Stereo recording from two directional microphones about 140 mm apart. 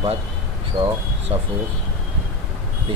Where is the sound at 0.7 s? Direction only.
35° right (ahead or behind).